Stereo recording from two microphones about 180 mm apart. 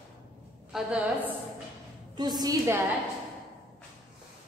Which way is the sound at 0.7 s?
5° right (ahead or behind).